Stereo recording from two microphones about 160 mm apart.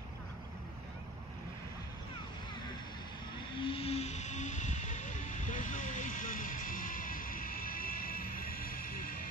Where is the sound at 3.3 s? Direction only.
30° left (ahead or behind); by 9.2 s 60° left (ahead or behind).